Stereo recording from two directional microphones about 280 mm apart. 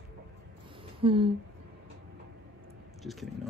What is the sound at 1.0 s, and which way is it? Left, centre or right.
Speech, centre.